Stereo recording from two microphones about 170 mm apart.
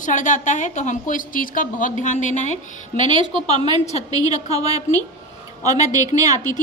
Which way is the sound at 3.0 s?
30° right (ahead or behind).